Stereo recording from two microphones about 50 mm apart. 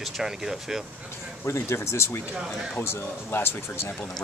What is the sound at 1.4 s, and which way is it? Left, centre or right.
Speech, left.